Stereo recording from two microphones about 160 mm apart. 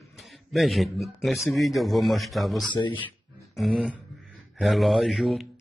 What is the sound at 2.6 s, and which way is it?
Speech, 30° left (ahead or behind).